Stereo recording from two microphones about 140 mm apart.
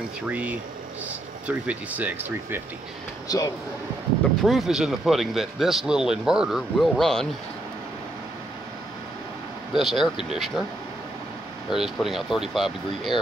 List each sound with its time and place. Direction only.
0.3 s speech: 10° right (ahead or behind)
3.3 s speech: 25° left (ahead or behind)
4.4 s speech: centre (ahead or behind)
9.8 s speech: centre (ahead or behind)
11.7 s speech: centre (ahead or behind)